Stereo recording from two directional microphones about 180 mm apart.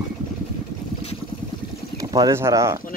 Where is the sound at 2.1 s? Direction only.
20° right (ahead or behind).